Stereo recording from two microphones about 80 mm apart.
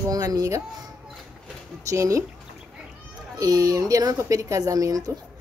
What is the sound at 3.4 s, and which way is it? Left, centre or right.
Speech, right.